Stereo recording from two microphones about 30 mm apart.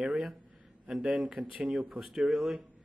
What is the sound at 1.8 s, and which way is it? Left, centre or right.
Speech, centre.